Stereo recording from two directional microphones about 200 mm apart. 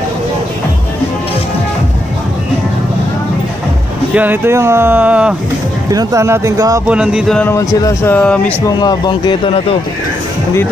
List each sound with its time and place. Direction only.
4.1 s speech: 10° right (ahead or behind)
5.9 s speech: 15° right (ahead or behind)
6.9 s speech: 5° right (ahead or behind)
8.6 s speech: 20° left (ahead or behind)